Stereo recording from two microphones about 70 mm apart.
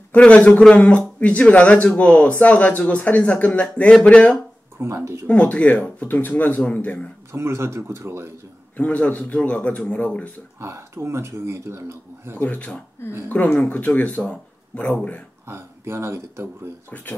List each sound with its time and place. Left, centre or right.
0.1 s a man's voice: left
4.7 s speech: right
5.2 s a man's voice: centre
7.3 s a man's voice: right
8.7 s a man's voice: centre
10.6 s a man's voice: right
12.4 s a man's voice: left
15.4 s speech: right